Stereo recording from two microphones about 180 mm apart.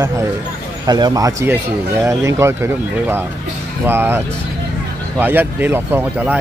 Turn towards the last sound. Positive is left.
turn(degrees=-10)  # may be behind; listen again after turning